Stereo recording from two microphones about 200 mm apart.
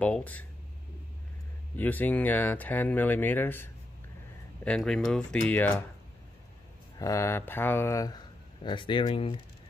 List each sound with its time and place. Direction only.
0.0 s speech: 5° left (ahead or behind)
1.8 s speech: 10° left (ahead or behind)
4.6 s speech: 5° left (ahead or behind)
7.0 s speech: 15° left (ahead or behind)